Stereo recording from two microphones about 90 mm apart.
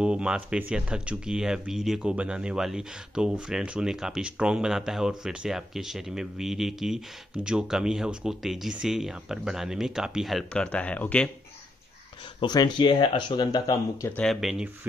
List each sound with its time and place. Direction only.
0.0 s speech: 10° right (ahead or behind)
10.5 s speech: 10° left (ahead or behind)
12.4 s speech: 55° left (ahead or behind)
14.2 s speech: centre (ahead or behind)